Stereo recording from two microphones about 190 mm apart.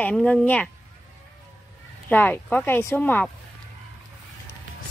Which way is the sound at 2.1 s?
10° left (ahead or behind).